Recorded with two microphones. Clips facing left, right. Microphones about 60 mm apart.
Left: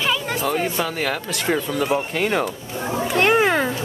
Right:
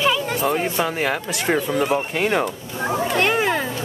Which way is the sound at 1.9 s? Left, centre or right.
Centre.